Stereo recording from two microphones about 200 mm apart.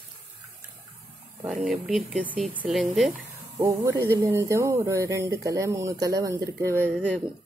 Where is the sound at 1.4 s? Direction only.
5° right (ahead or behind).